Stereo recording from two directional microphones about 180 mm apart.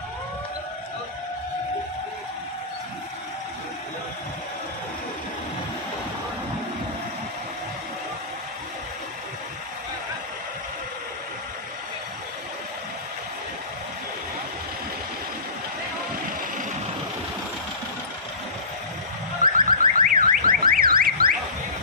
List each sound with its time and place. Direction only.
19.4 s car alarm: 50° right (ahead or behind)